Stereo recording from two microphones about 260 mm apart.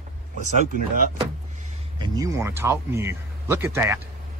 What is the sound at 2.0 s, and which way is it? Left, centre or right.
Speech, centre.